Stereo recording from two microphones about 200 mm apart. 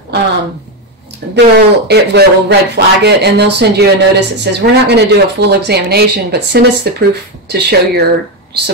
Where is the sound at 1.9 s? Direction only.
55° right (ahead or behind).